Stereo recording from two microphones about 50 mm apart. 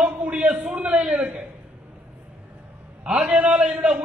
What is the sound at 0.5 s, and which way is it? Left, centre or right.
Speech, centre.